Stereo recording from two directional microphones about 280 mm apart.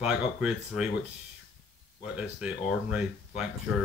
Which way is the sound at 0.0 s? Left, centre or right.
Centre.